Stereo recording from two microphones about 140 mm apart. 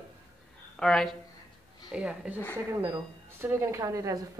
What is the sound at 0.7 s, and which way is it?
Speech, 5° left (ahead or behind).